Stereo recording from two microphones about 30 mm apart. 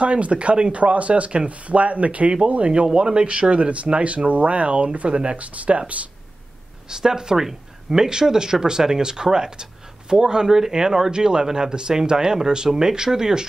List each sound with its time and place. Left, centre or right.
0.0 s speech: right
0.7 s speech: right
2.7 s speech: right
5.4 s speech: right
6.9 s speech: right